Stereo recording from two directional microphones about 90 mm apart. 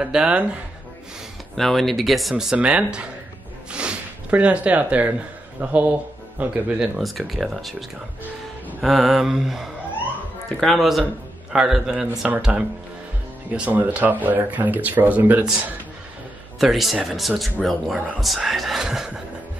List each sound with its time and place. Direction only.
0.0 s a man's voice: 10° right (ahead or behind)
1.5 s speech: centre (ahead or behind)
3.7 s snort: 10° right (ahead or behind)
5.6 s a man's voice: 15° right (ahead or behind)
7.0 s speech: centre (ahead or behind)
8.8 s a man's voice: centre (ahead or behind); by 15.4 s 20° right (ahead or behind)
16.5 s speech: centre (ahead or behind)